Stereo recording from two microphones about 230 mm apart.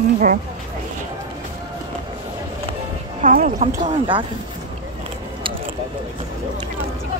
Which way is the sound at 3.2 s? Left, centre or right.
Right.